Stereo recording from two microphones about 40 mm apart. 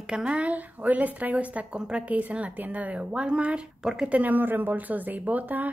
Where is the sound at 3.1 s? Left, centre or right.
Right.